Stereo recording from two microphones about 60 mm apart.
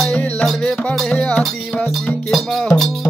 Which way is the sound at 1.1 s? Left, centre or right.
Left.